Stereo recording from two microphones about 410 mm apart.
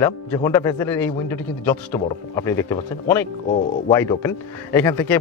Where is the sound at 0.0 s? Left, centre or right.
Centre.